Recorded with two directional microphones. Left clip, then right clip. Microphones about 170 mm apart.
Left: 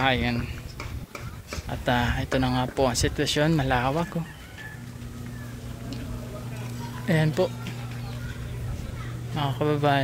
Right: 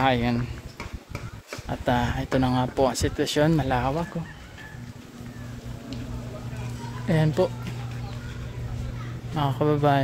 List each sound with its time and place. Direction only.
0.0 s speech: 25° right (ahead or behind)
1.7 s speech: 15° right (ahead or behind)
3.5 s speech: 10° right (ahead or behind)
7.1 s speech: 15° right (ahead or behind)
9.3 s speech: 25° right (ahead or behind)